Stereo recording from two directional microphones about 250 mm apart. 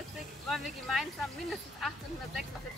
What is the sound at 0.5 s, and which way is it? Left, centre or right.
Speech, centre.